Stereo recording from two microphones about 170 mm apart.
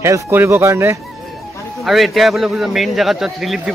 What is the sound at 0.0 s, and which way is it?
Speech, 15° right (ahead or behind).